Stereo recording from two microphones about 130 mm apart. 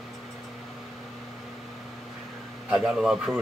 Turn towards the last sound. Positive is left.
turn(degrees=-5)  # may be behind; listen again after turning